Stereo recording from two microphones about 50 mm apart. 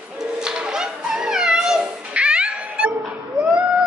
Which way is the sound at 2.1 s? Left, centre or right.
Right.